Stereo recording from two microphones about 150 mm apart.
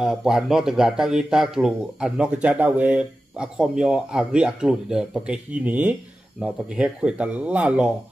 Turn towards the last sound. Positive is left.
turn(degrees=-10)  # may be behind; listen again after turning